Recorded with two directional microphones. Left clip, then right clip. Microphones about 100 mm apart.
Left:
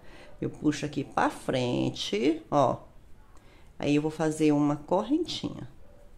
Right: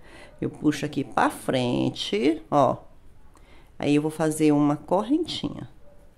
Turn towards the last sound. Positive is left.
turn(degrees=-35)  # may be behind; listen again after turning